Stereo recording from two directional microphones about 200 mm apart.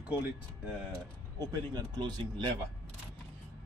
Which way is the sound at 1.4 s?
20° right (ahead or behind).